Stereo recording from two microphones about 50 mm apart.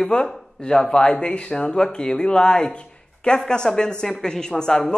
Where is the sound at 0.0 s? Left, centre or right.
Centre.